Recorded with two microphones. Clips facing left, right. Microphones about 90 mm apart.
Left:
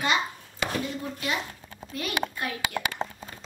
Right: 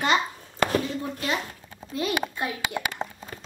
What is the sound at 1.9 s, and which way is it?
Speech, 25° right (ahead or behind).